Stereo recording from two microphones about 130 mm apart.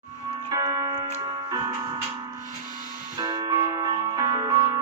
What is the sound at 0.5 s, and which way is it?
Clock, 25° right (ahead or behind).